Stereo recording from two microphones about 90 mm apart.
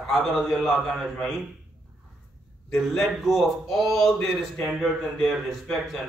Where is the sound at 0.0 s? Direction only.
5° left (ahead or behind).